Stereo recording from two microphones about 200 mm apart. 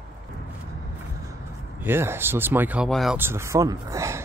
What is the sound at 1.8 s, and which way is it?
Speech, 10° right (ahead or behind).